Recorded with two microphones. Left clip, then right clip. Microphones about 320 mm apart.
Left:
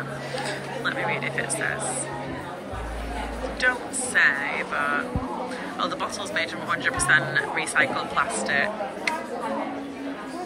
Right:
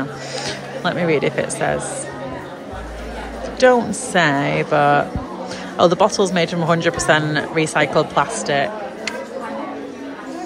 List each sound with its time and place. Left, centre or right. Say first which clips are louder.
0.5 s speech: right 7 dB; centre
3.5 s speech: right 11 dB; centre